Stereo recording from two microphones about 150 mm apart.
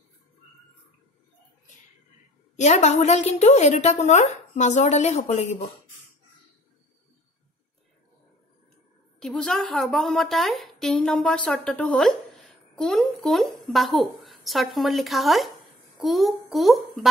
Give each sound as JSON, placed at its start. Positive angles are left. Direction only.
{"t": 2.5, "sound": "a woman's voice", "side_deg": 50}
{"t": 9.2, "sound": "a woman's voice", "side_deg": 5}